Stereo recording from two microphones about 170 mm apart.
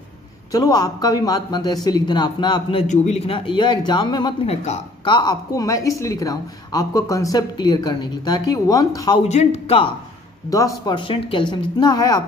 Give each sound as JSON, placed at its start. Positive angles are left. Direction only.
{"t": 0.5, "sound": "speech", "side_deg": 20}
{"t": 2.9, "sound": "speech", "side_deg": 40}
{"t": 9.3, "sound": "speech", "side_deg": 40}
{"t": 10.5, "sound": "speech", "side_deg": 20}